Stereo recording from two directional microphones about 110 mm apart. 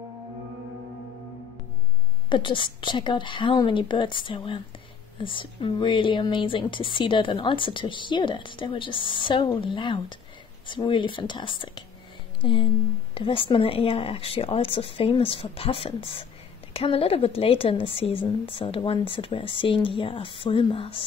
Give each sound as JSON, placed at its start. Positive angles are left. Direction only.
{"t": 2.2, "sound": "a woman's voice", "side_deg": 50}